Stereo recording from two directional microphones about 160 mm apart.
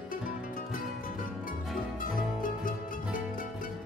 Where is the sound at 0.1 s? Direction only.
60° left (ahead or behind).